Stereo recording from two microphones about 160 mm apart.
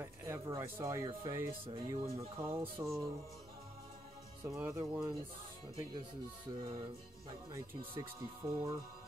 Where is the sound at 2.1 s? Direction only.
20° right (ahead or behind).